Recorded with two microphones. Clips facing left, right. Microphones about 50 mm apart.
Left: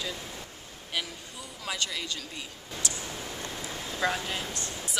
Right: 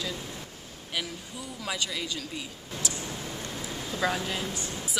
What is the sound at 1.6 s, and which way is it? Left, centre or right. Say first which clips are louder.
Speech: right 1 dB; centre.